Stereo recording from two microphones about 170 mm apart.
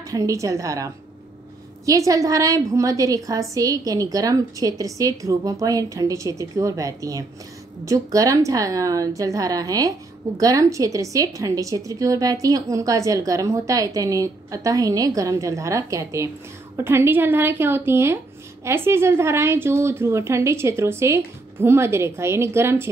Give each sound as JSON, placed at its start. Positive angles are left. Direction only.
{"t": 0.1, "sound": "a woman's voice", "side_deg": -20}
{"t": 1.9, "sound": "a woman's voice", "side_deg": -20}